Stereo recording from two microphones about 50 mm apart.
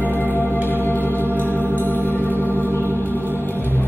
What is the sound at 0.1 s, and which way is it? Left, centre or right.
Organ, left.